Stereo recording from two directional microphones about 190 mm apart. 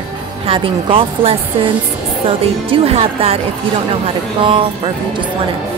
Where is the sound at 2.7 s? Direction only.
30° right (ahead or behind).